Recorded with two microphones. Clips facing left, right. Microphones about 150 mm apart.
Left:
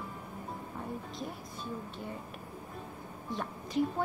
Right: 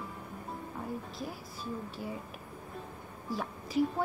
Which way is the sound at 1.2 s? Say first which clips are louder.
Even; centre (ahead or behind).